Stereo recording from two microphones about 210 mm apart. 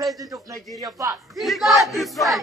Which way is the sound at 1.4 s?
Centre (ahead or behind).